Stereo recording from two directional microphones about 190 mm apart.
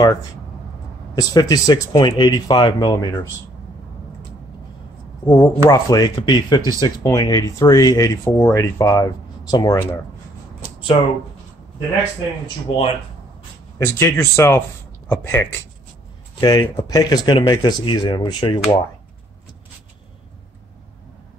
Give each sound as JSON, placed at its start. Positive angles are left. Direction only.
{"t": 1.1, "sound": "speech", "side_deg": 20}
{"t": 5.2, "sound": "speech", "side_deg": 15}
{"t": 10.9, "sound": "speech", "side_deg": 30}
{"t": 13.7, "sound": "speech", "side_deg": 15}